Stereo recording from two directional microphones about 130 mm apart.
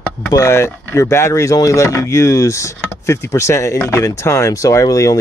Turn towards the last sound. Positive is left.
turn(degrees=25)  # may be behind; listen again after turning